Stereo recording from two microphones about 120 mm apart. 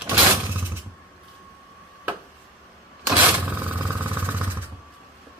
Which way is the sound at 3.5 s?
15° right (ahead or behind).